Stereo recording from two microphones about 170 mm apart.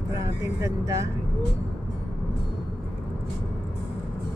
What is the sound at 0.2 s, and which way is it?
Speech, 20° right (ahead or behind).